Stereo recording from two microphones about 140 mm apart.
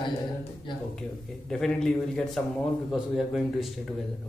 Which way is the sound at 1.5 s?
5° left (ahead or behind).